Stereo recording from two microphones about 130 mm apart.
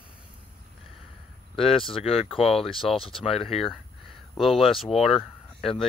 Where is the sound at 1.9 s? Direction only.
45° left (ahead or behind).